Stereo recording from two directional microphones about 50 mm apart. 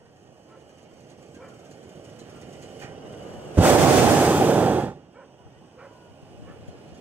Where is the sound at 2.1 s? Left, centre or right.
Right.